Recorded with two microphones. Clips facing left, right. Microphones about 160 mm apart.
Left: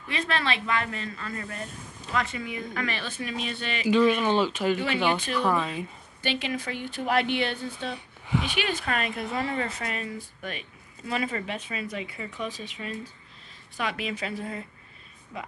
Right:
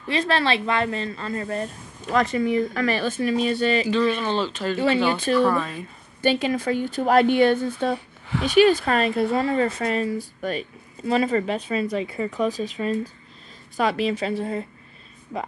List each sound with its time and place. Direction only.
0.1 s a woman's voice: 35° right (ahead or behind)
3.9 s speech: 10° left (ahead or behind)
4.7 s a woman's voice: 35° right (ahead or behind)
5.3 s speech: 15° left (ahead or behind)
6.2 s a woman's voice: 40° right (ahead or behind)
8.3 s speech: 15° left (ahead or behind)
8.5 s a woman's voice: 40° right (ahead or behind)